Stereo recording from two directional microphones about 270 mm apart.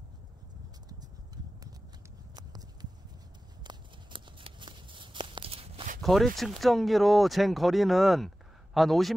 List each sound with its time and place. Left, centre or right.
0.8 s clip-clop: centre
2.3 s a sound: centre
6.0 s speech: centre